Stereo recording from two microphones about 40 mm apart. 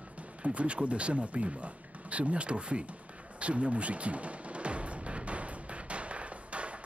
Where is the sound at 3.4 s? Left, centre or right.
Right.